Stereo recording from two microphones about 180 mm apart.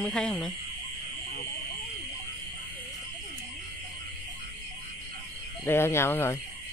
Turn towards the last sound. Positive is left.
turn(degrees=15)  # may be behind; listen again after turning